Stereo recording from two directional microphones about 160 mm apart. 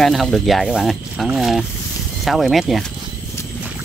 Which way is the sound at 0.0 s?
Centre (ahead or behind).